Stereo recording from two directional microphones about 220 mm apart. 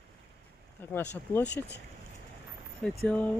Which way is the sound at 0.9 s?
10° left (ahead or behind).